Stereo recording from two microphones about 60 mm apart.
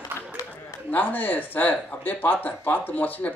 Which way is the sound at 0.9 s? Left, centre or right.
Left.